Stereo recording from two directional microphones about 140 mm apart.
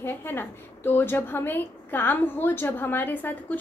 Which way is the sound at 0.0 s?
15° left (ahead or behind).